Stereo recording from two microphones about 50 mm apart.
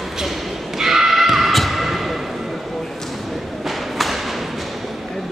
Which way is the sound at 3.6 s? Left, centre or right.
Centre.